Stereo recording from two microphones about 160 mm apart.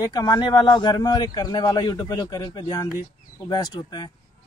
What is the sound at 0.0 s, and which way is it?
Speech, 25° left (ahead or behind).